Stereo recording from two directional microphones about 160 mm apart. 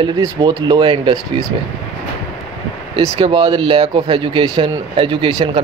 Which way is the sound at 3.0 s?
30° right (ahead or behind).